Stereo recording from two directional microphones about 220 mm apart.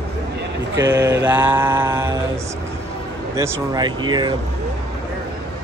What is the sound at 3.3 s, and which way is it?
Speech, 15° right (ahead or behind).